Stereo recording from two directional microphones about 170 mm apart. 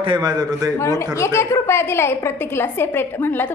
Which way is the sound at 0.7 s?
15° left (ahead or behind).